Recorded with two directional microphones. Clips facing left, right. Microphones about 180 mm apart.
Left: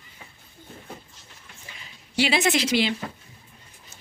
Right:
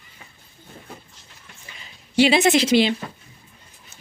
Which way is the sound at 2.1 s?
25° right (ahead or behind).